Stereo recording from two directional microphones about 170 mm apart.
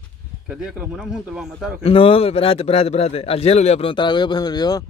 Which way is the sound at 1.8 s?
35° left (ahead or behind).